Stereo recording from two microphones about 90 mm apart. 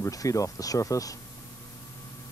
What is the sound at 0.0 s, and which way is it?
Speech, 40° left (ahead or behind).